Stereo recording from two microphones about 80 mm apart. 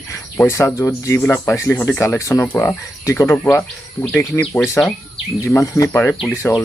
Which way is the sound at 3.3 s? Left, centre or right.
Left.